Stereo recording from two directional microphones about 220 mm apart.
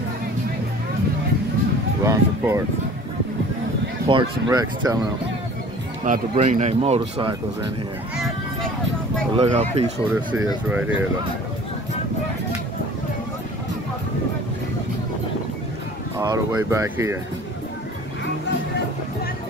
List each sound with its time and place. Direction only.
2.0 s a sound: 15° right (ahead or behind)
4.1 s speech: 20° right (ahead or behind)
6.0 s speech: 30° right (ahead or behind)
9.3 s speech: 30° right (ahead or behind)
10.1 s speech: 5° right (ahead or behind)
16.2 s speech: 15° right (ahead or behind)